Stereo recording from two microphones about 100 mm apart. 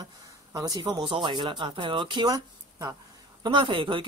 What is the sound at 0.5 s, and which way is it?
A woman's voice, 35° right (ahead or behind).